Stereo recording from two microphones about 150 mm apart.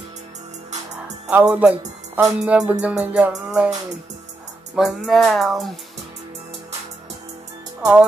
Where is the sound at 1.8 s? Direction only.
20° right (ahead or behind).